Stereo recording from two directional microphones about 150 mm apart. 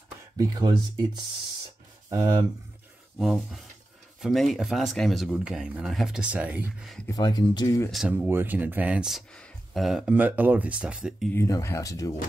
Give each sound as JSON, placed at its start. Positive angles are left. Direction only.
{"t": 0.4, "sound": "speech", "side_deg": -30}
{"t": 3.2, "sound": "speech", "side_deg": 0}
{"t": 7.1, "sound": "speech", "side_deg": 25}
{"t": 8.1, "sound": "speech", "side_deg": -15}
{"t": 11.3, "sound": "speech", "side_deg": 20}